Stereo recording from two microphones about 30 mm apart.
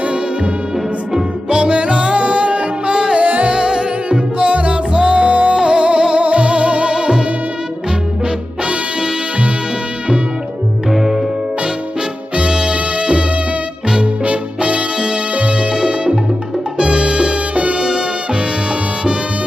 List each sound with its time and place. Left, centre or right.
0.0 s music: right
1.7 s music: right
2.9 s music: right
4.5 s music: right
5.5 s music: right
6.9 s music: right
8.6 s music: right
10.9 s music: centre
12.7 s music: right
15.5 s salsa music: right
17.7 s music: right